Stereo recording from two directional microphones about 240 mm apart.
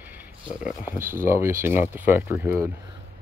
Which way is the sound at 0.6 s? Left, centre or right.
Centre.